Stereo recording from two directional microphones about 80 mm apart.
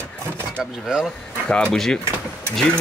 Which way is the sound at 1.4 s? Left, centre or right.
Centre.